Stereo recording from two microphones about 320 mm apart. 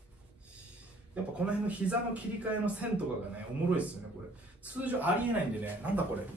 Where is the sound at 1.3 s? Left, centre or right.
Centre.